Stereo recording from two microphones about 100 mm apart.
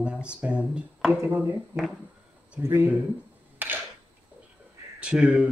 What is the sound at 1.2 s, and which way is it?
Speech, 25° right (ahead or behind).